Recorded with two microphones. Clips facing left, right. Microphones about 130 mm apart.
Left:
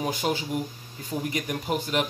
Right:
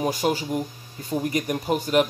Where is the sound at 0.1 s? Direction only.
40° right (ahead or behind).